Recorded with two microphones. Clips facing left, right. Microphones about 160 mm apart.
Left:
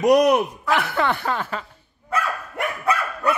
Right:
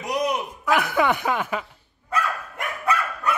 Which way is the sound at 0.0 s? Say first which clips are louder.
Left 10 dB; 75° left (ahead or behind).